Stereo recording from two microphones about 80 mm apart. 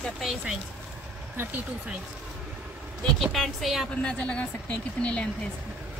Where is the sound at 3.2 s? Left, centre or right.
Centre.